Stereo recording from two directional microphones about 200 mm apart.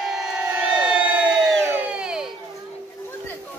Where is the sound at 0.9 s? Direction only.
5° right (ahead or behind).